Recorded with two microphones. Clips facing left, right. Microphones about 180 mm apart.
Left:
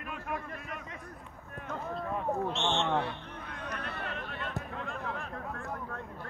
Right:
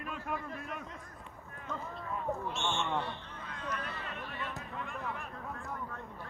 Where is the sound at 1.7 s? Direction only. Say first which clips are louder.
Left 4 dB; 70° left (ahead or behind).